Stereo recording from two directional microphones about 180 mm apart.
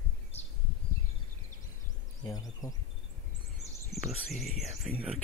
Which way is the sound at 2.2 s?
20° left (ahead or behind).